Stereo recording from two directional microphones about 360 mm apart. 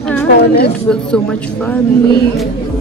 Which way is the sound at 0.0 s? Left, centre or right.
Centre.